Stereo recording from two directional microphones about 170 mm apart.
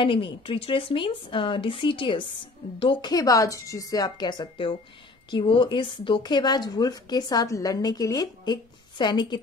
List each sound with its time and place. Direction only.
0.0 s speech: 30° left (ahead or behind)